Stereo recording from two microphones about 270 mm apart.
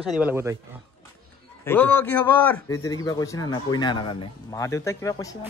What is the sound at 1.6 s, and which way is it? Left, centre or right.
A man's voice, centre.